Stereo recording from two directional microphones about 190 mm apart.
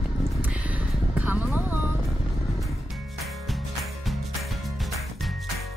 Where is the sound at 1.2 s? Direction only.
10° right (ahead or behind).